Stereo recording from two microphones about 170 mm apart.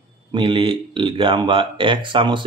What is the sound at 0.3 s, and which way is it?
Speech, 30° right (ahead or behind).